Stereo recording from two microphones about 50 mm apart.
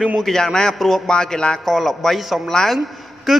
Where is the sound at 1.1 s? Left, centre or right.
Centre.